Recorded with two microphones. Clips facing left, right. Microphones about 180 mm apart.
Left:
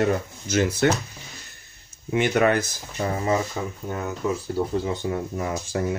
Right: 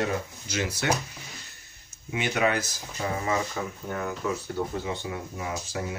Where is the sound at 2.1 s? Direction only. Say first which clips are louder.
Left 6 dB; 50° left (ahead or behind).